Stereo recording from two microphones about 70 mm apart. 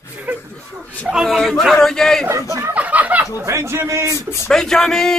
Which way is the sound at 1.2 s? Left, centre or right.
Centre.